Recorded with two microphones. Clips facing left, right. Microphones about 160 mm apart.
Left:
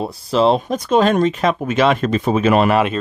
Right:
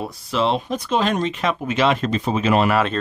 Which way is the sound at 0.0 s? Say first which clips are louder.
Left 6 dB; 35° left (ahead or behind).